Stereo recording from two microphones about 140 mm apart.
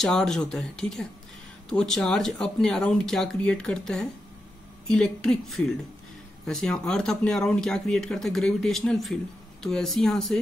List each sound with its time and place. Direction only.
0.0 s speech: 5° left (ahead or behind)